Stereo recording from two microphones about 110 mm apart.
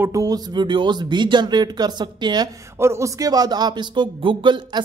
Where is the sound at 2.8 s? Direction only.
25° right (ahead or behind); by 4.8 s 45° right (ahead or behind).